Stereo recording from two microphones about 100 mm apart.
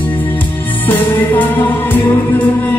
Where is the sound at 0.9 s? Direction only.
20° left (ahead or behind).